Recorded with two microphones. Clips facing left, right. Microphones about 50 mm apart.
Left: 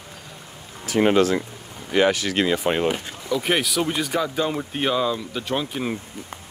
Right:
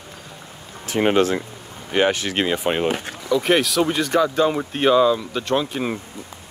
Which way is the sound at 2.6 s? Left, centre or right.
Centre.